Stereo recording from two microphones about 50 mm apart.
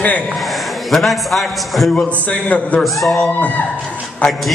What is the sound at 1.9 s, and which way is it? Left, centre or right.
A man's voice, left.